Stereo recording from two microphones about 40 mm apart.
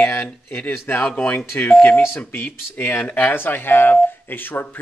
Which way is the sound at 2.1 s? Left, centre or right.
Left.